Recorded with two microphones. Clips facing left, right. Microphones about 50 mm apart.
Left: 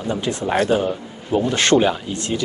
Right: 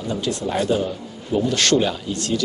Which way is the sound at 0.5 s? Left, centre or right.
Left.